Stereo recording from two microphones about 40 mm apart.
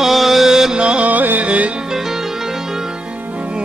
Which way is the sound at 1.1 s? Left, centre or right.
Right.